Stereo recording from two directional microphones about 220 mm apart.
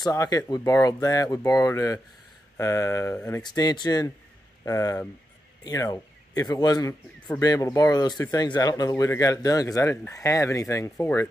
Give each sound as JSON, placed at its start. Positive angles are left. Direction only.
{"t": 0.0, "sound": "speech", "side_deg": 15}